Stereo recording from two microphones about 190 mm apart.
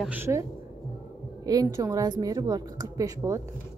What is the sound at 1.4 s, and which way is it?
A woman's voice, 20° right (ahead or behind).